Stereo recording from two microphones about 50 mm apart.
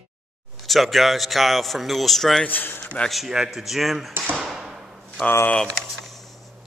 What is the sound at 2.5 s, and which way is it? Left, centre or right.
Speech, left.